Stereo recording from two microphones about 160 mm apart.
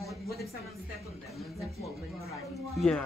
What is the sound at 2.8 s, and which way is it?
Speech, 5° left (ahead or behind).